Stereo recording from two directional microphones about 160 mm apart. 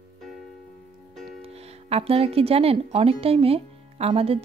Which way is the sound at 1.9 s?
35° right (ahead or behind).